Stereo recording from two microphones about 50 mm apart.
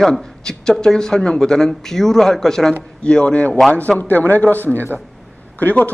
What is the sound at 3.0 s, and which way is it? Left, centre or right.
Speech, left.